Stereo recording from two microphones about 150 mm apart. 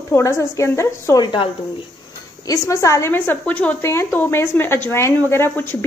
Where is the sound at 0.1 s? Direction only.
20° left (ahead or behind).